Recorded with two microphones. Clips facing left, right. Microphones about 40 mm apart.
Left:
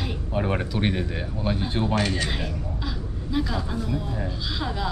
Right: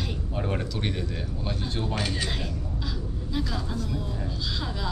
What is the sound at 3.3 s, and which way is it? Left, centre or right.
Speech, centre.